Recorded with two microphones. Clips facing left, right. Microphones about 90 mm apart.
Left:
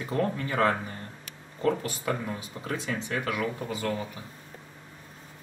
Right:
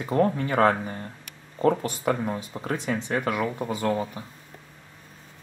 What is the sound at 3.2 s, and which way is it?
Speech, 40° right (ahead or behind).